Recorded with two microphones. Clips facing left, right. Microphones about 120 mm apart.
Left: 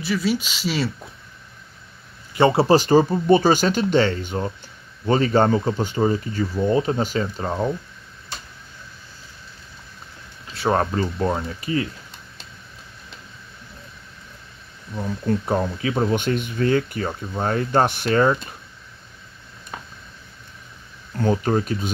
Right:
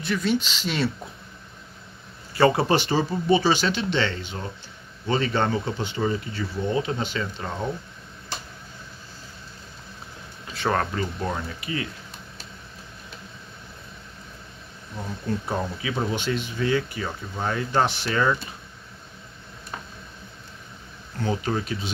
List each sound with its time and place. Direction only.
0.0 s speech: 5° left (ahead or behind)
2.3 s speech: 25° left (ahead or behind)
10.7 s speech: 25° left (ahead or behind)
15.4 s speech: 50° left (ahead or behind)
21.2 s speech: 45° left (ahead or behind)